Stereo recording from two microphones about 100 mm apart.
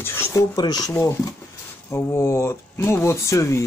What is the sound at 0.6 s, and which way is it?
Speech, 40° left (ahead or behind).